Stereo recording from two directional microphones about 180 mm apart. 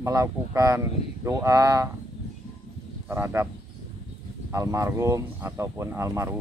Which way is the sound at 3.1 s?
15° right (ahead or behind).